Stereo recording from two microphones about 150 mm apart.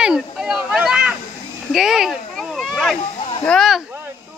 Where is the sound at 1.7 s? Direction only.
5° right (ahead or behind).